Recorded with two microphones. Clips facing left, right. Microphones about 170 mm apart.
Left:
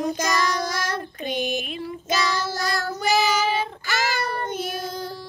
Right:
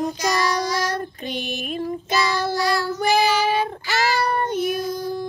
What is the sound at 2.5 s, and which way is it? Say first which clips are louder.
Child singing: right 5 dB; 45° left (ahead or behind).